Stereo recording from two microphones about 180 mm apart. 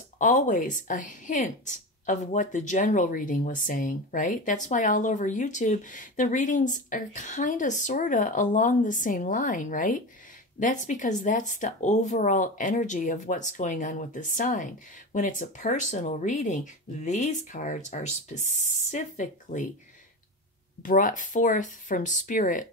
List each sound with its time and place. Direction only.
0.2 s speech: 45° left (ahead or behind)
20.8 s speech: 45° left (ahead or behind)